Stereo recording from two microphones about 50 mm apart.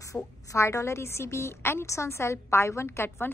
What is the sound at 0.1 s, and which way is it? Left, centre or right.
Speech, left.